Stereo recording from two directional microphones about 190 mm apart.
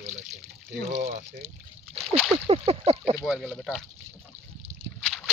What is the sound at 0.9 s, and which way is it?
Speech, 35° right (ahead or behind).